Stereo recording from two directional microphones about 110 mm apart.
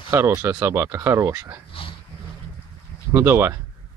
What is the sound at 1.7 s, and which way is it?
Dog, 55° left (ahead or behind).